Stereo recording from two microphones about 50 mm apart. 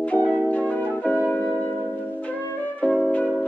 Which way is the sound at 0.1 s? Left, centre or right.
Left.